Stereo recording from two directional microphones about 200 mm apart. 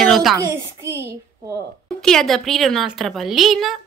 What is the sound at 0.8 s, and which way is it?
Speech, 15° right (ahead or behind).